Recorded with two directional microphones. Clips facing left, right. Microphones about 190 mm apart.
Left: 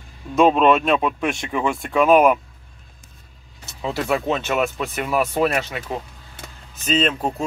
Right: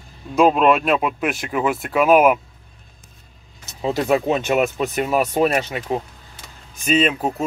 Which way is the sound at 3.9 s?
15° right (ahead or behind).